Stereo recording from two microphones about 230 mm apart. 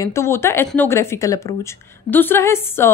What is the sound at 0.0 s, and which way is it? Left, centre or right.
A woman's voice, centre.